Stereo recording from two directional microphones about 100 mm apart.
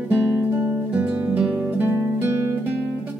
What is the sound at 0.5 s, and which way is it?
Guitar, 15° right (ahead or behind).